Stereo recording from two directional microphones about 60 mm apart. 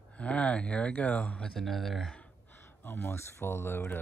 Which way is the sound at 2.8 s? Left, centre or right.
Left.